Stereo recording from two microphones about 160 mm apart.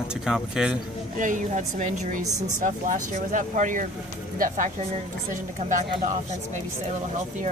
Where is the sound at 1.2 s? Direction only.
50° right (ahead or behind).